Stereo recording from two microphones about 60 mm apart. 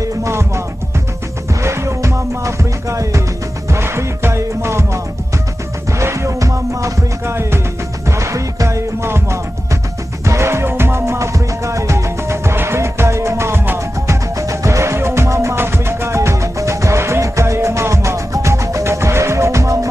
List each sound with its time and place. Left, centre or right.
0.0 s music: right
1.6 s music: right
3.7 s music: right
8.2 s music: right
15.5 s music: right
18.9 s music: right